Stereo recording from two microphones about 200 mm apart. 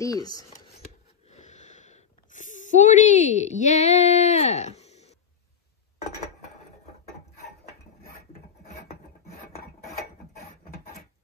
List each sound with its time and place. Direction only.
0.0 s speech: 20° left (ahead or behind)
1.3 s sniff: 35° left (ahead or behind)
10.4 s a sound: 50° left (ahead or behind)